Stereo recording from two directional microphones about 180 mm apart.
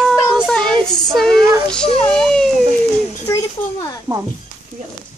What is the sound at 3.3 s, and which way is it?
Speech, 20° left (ahead or behind).